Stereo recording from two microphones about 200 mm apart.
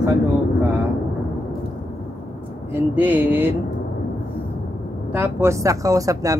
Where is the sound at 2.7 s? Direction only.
10° right (ahead or behind).